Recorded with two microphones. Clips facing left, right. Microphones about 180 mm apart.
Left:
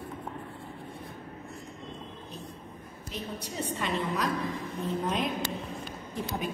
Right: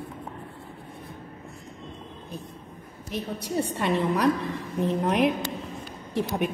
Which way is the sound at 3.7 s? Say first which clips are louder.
Right 5 dB; 65° right (ahead or behind).